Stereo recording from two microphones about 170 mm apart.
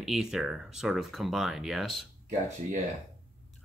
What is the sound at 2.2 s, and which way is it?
Speech, 45° right (ahead or behind).